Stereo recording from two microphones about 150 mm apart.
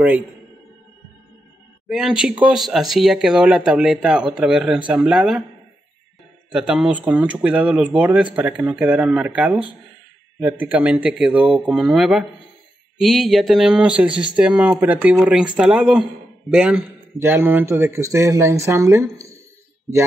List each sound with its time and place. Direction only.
1.9 s speech: 5° right (ahead or behind)
6.5 s speech: 5° right (ahead or behind)